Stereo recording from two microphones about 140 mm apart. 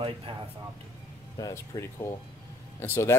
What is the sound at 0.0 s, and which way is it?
Speech, 40° right (ahead or behind).